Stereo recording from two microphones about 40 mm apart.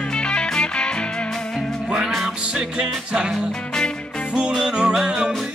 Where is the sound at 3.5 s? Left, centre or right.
Centre.